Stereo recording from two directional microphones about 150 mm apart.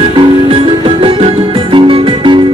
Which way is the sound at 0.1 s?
35° right (ahead or behind).